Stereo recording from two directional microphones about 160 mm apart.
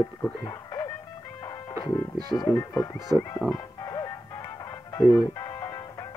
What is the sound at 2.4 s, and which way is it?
Speech, 25° left (ahead or behind).